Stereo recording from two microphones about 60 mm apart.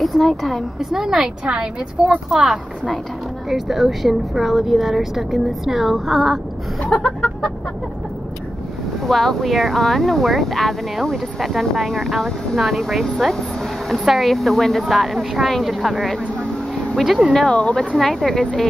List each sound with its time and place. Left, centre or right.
0.0 s speech: centre
1.4 s a woman's voice: centre
6.9 s chicken: centre
9.0 s speech: centre
17.3 s speech: centre